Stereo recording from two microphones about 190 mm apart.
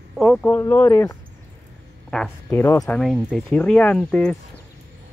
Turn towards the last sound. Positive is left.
turn(degrees=5)  # may be behind; listen again after turning